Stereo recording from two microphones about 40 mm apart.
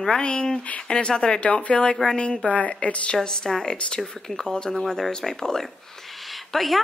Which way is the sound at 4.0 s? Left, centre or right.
Centre.